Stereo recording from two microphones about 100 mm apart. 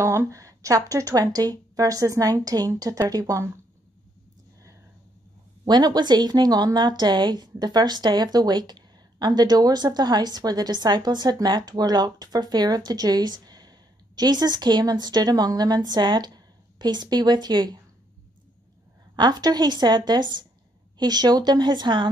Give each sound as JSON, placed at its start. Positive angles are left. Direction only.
{"t": 0.0, "sound": "speech", "side_deg": -25}
{"t": 5.7, "sound": "speech", "side_deg": -45}
{"t": 19.1, "sound": "speech", "side_deg": -45}